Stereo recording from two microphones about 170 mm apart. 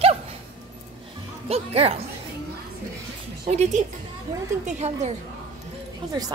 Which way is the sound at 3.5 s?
40° right (ahead or behind).